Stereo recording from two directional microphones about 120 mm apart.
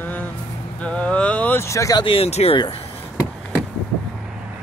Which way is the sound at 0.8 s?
10° left (ahead or behind).